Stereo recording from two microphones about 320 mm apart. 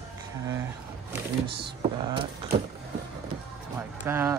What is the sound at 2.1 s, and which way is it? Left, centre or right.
Speech, centre.